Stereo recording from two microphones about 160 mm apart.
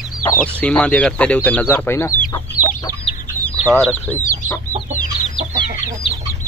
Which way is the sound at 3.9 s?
15° left (ahead or behind).